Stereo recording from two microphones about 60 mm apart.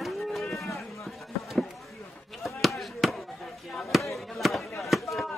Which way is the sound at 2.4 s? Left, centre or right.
Centre.